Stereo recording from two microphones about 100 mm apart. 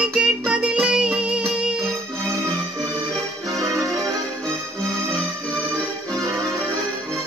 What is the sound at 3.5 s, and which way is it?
Music, 35° right (ahead or behind).